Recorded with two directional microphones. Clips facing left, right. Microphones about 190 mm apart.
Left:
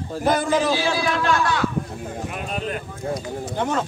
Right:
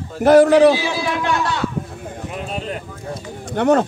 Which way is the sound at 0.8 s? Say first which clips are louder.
Even; 20° right (ahead or behind).